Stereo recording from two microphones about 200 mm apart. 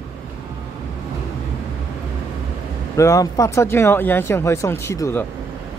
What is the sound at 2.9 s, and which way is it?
Speech, 15° left (ahead or behind).